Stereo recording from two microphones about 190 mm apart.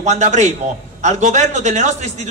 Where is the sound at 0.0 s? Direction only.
40° right (ahead or behind).